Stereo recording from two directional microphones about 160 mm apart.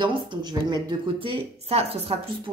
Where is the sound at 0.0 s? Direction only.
30° right (ahead or behind).